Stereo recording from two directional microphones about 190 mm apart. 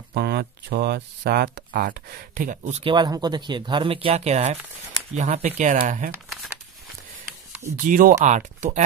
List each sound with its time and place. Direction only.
0.1 s speech: 60° right (ahead or behind)
7.8 s speech: 45° right (ahead or behind)